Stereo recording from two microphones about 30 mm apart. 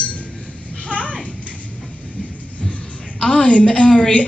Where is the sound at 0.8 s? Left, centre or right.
Left.